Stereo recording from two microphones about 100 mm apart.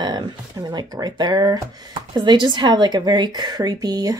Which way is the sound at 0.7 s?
40° right (ahead or behind).